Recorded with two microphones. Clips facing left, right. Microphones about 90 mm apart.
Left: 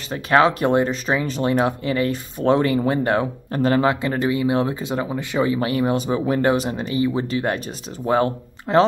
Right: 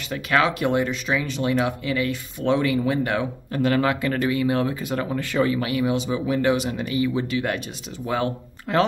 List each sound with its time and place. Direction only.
0.1 s speech: 35° left (ahead or behind)